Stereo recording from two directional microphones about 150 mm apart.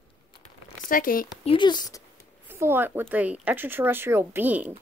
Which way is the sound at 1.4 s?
35° left (ahead or behind).